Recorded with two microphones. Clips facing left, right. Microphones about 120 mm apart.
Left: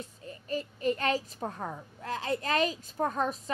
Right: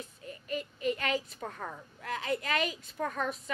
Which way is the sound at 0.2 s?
35° left (ahead or behind).